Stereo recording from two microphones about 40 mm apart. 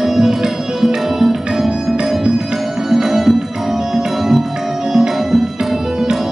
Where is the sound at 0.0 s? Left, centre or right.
Centre.